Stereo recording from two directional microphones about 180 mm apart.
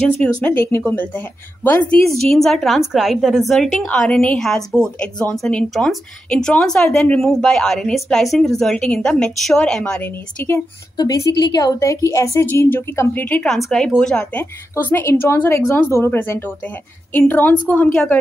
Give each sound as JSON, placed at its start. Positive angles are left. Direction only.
{"t": 0.4, "sound": "a woman's voice", "side_deg": 10}
{"t": 11.0, "sound": "a woman's voice", "side_deg": 20}